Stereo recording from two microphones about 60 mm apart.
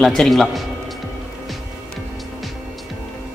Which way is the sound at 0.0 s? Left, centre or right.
Centre.